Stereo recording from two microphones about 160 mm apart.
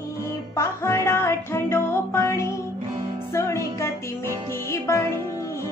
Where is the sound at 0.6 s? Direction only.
15° left (ahead or behind).